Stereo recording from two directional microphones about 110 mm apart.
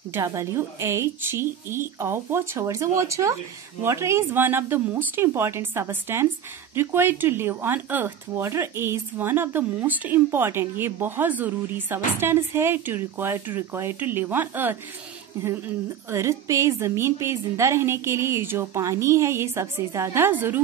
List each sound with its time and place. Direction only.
0.1 s speech: 30° right (ahead or behind)